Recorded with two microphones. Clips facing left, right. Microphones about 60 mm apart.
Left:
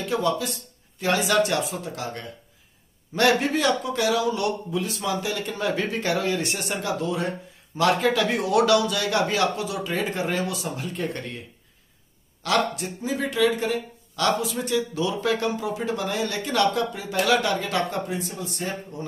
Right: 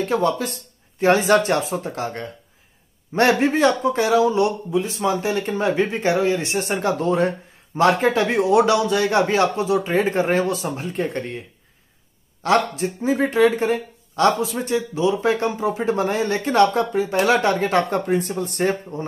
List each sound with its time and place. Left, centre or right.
0.0 s speech: right
12.4 s speech: right